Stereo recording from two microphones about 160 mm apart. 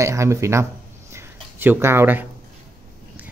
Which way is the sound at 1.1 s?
15° right (ahead or behind).